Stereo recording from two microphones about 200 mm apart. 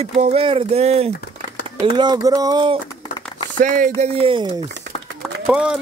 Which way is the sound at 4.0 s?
30° right (ahead or behind).